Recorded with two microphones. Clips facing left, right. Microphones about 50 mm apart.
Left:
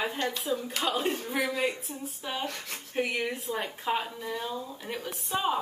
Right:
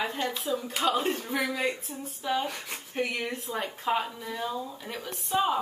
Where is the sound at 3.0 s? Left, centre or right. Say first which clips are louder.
Left 1 dB; centre.